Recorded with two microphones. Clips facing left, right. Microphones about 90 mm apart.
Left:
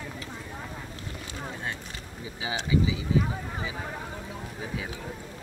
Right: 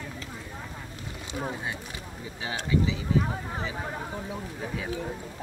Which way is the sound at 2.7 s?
5° left (ahead or behind).